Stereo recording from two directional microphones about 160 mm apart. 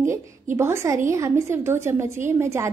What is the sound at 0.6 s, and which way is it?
A woman's voice, 15° right (ahead or behind).